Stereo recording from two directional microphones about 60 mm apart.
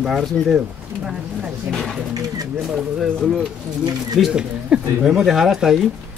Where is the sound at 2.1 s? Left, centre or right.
Right.